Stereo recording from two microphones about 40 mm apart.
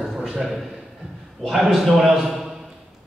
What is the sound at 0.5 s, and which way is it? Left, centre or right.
A man's voice, centre.